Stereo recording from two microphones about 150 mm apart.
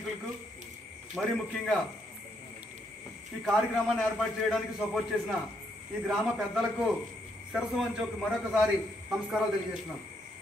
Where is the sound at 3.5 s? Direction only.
Centre (ahead or behind).